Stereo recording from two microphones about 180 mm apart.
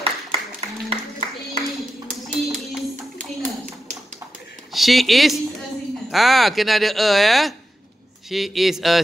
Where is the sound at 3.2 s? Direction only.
40° right (ahead or behind).